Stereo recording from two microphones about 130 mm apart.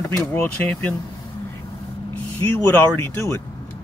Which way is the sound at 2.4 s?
10° left (ahead or behind).